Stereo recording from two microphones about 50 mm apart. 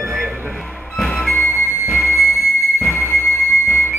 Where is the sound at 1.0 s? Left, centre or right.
Centre.